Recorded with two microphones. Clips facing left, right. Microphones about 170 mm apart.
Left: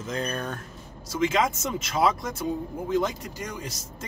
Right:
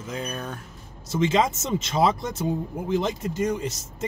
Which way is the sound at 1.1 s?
25° right (ahead or behind).